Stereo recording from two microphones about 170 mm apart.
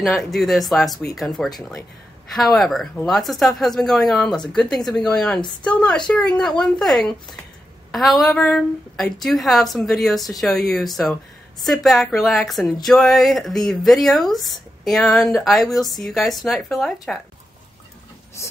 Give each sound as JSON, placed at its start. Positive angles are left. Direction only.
{"t": 0.0, "sound": "speech", "side_deg": 0}
{"t": 18.4, "sound": "speech", "side_deg": 15}